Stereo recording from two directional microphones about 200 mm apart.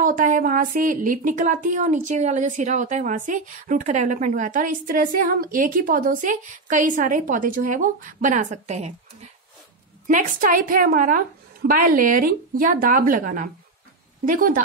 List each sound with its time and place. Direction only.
0.0 s a woman's voice: 40° right (ahead or behind)